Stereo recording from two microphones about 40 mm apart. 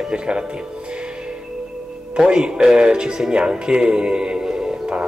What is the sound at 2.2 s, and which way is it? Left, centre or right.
Speech, right.